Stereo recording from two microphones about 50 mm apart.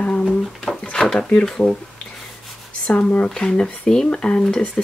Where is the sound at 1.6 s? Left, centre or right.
Left.